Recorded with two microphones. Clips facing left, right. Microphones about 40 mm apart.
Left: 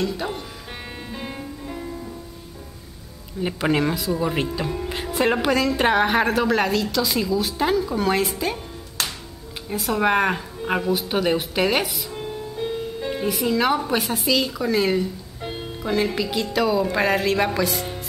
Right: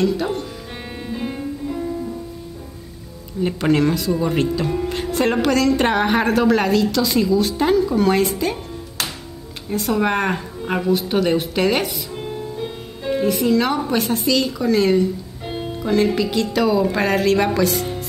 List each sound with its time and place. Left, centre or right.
0.0 s a woman's voice: centre
1.0 s music: centre
3.4 s a woman's voice: centre